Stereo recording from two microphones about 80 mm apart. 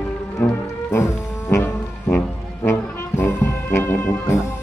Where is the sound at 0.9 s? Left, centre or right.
Left.